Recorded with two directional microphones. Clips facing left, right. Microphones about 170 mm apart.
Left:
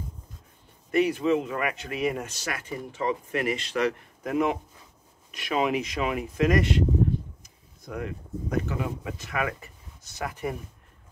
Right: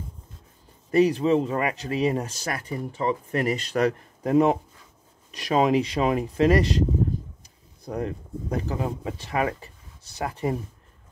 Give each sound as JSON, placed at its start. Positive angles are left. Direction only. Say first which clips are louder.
{"t": 0.9, "sound": "speech", "louder": "right 3 dB", "side_deg": -35}